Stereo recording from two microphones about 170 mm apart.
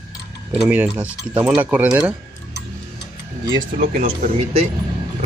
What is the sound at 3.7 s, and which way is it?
Speech, 55° right (ahead or behind).